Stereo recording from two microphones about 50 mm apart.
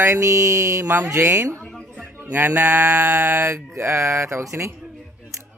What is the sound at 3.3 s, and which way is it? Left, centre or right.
Mantra, right.